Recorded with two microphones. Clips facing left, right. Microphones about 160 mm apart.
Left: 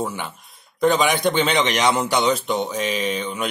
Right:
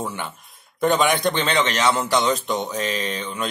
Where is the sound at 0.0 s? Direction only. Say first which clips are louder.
Left 2 dB; centre (ahead or behind).